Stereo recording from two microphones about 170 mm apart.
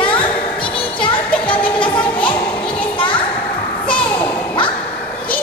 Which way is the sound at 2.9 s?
30° left (ahead or behind).